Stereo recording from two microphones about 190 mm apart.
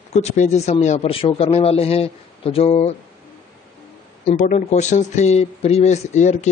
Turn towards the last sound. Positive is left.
turn(degrees=40)  # may be behind; listen again after turning